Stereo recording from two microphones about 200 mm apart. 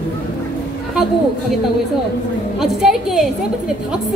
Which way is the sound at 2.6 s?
Centre (ahead or behind).